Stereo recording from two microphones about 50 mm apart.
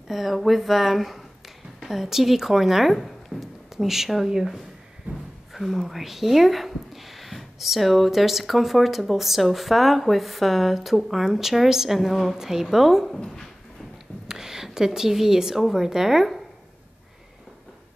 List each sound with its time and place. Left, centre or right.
0.1 s speech: centre
5.1 s a sound: right
5.5 s speech: centre
14.2 s a woman's voice: centre